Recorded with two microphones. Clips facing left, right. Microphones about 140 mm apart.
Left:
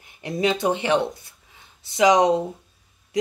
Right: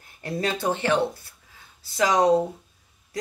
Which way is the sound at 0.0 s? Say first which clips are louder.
Left 4 dB; 15° left (ahead or behind).